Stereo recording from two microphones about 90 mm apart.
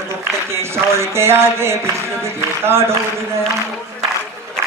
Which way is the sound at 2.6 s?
30° right (ahead or behind).